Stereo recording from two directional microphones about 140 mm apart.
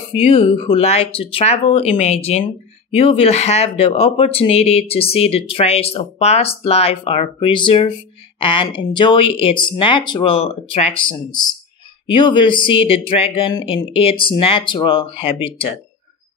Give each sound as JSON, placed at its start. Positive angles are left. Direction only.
{"t": 0.1, "sound": "speech", "side_deg": 45}